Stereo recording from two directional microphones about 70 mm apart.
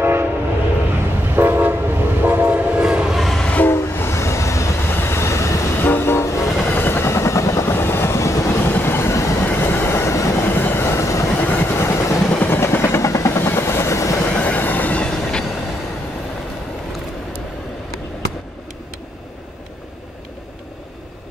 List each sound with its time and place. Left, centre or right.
0.0 s train: right
1.3 s train: right
2.8 s train: centre
3.2 s train: centre
3.4 s train: left
3.7 s train: left
5.8 s train: left
6.7 s vehicle: left
7.7 s train: left
9.5 s train: left
10.4 s train: left
11.4 s vehicle: left
14.3 s train: left